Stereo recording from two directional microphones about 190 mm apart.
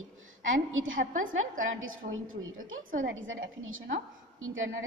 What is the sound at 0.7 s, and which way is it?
Speech, 90° right.